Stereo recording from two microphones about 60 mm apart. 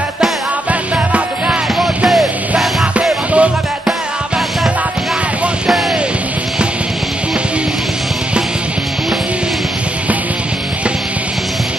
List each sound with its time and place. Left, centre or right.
3.0 s music: right